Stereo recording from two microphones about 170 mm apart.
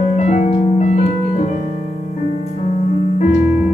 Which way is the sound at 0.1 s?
40° left (ahead or behind).